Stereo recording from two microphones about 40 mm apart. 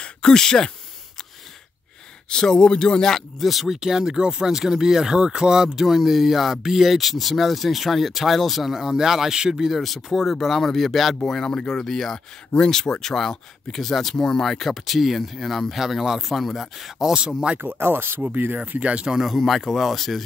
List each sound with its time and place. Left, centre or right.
0.0 s speech: centre
2.2 s speech: centre
11.2 s speech: centre
17.7 s speech: right
18.3 s speech: right
18.8 s speech: right
19.0 s speech: centre
19.4 s speech: centre